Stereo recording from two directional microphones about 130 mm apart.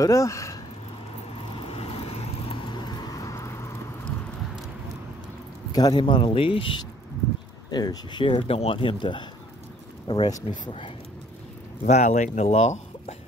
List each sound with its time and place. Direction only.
0.0 s speech: 25° left (ahead or behind)
1.3 s vehicle: 45° left (ahead or behind); by 3.5 s 25° left (ahead or behind)
5.7 s speech: 30° left (ahead or behind)
11.8 s speech: 60° left (ahead or behind)